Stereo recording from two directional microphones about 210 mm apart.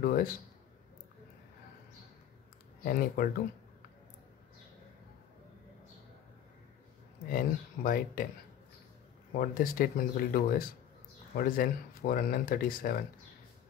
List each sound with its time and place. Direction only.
0.0 s speech: 45° left (ahead or behind)
2.8 s speech: 45° left (ahead or behind)
7.2 s speech: 45° left (ahead or behind)
9.3 s speech: 45° left (ahead or behind)